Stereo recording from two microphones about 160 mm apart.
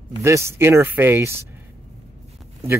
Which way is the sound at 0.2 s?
15° right (ahead or behind).